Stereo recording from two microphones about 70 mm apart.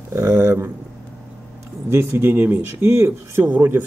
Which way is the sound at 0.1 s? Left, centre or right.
Right.